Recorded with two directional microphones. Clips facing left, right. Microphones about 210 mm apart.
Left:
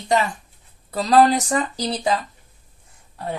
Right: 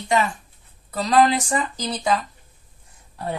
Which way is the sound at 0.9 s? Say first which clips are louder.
Left 2 dB; 35° left (ahead or behind).